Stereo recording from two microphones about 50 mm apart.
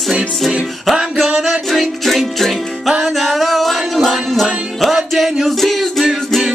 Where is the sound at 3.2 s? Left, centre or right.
Centre.